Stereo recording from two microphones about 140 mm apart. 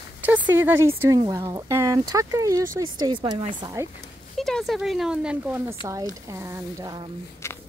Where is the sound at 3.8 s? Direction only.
20° right (ahead or behind).